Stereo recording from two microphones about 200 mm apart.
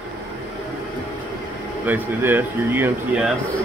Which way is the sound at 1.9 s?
10° right (ahead or behind).